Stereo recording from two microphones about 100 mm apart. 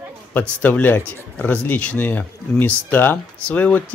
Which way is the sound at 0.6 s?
20° left (ahead or behind).